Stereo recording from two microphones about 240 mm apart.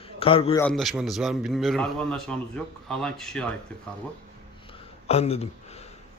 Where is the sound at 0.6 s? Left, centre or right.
Centre.